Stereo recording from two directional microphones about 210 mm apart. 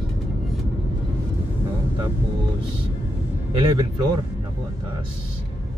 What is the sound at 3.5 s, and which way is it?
Speech, 25° right (ahead or behind).